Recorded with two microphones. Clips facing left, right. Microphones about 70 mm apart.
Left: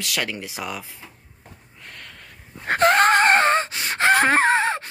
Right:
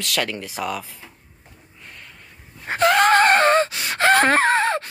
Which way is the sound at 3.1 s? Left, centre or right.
Left.